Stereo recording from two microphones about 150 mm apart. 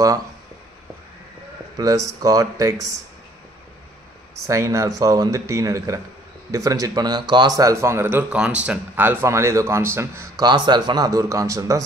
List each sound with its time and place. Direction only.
1.8 s speech: 25° right (ahead or behind)
4.5 s speech: 20° right (ahead or behind)
10.4 s speech: 30° right (ahead or behind)